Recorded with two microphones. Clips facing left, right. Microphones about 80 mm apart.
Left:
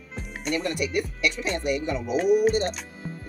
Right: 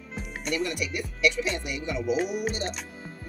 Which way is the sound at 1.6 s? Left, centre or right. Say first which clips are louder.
Left 5 dB; left.